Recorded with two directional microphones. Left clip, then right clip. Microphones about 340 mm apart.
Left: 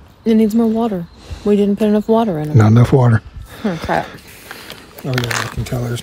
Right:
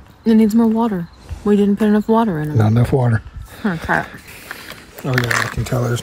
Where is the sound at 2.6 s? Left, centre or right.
Right.